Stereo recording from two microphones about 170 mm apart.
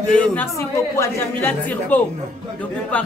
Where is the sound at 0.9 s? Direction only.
10° left (ahead or behind).